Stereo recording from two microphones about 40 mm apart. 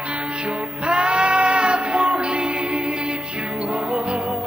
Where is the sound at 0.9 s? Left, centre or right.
Right.